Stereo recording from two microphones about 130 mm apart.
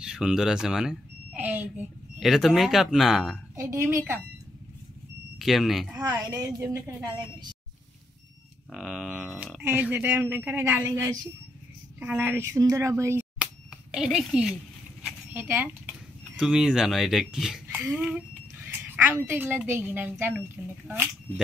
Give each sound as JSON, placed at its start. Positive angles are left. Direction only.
{"t": 0.0, "sound": "speech", "side_deg": -5}
{"t": 2.1, "sound": "speech", "side_deg": 0}
{"t": 3.5, "sound": "a woman's voice", "side_deg": -25}
{"t": 5.4, "sound": "speech", "side_deg": 0}
{"t": 5.9, "sound": "a woman's voice", "side_deg": -30}
{"t": 7.1, "sound": "a woman's voice", "side_deg": -35}
{"t": 8.7, "sound": "speech", "side_deg": 0}
{"t": 13.4, "sound": "finger snapping", "side_deg": -5}
{"t": 15.0, "sound": "a sound", "side_deg": -5}
{"t": 15.4, "sound": "speech", "side_deg": -15}
{"t": 16.3, "sound": "speech", "side_deg": -5}
{"t": 17.6, "sound": "a woman's voice", "side_deg": -15}